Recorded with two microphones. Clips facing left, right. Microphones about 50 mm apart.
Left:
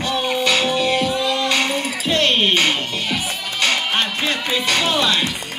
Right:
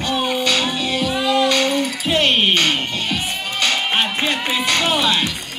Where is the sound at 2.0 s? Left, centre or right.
Centre.